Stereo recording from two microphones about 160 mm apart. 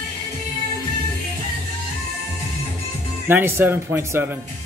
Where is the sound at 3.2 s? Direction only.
15° right (ahead or behind).